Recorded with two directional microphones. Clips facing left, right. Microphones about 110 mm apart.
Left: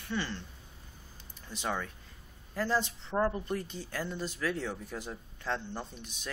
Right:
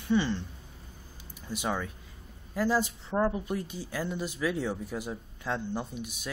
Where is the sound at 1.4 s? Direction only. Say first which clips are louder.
Right 3 dB; 10° right (ahead or behind).